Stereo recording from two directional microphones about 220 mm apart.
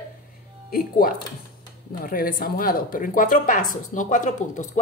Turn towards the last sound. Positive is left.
turn(degrees=35)  # may be behind; listen again after turning